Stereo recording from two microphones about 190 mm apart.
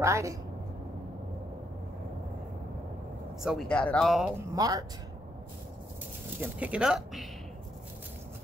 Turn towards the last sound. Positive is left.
turn(degrees=-5)  # may be behind; listen again after turning